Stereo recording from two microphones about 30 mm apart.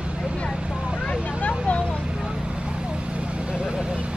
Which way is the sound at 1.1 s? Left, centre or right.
Left.